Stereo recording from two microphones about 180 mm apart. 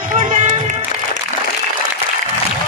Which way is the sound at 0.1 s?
40° right (ahead or behind).